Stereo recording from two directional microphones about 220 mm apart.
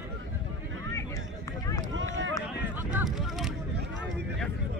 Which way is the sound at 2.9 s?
Centre (ahead or behind).